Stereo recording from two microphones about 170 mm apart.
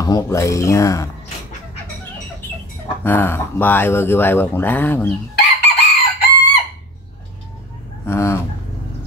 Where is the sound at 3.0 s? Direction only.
10° left (ahead or behind).